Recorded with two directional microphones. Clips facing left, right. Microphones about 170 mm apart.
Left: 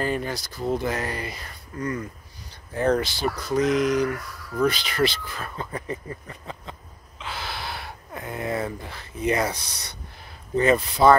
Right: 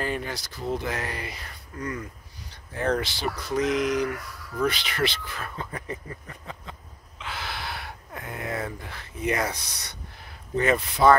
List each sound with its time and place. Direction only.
0.0 s speech: 40° left (ahead or behind)
6.7 s a sound: 30° left (ahead or behind)
10.5 s speech: 30° left (ahead or behind)